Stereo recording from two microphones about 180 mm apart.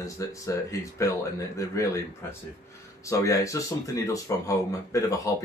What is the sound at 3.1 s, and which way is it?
Speech, 15° left (ahead or behind).